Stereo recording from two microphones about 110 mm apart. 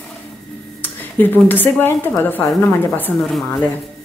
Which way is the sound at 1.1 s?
15° left (ahead or behind).